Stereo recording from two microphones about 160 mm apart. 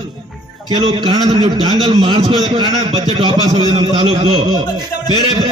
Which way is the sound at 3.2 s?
30° right (ahead or behind).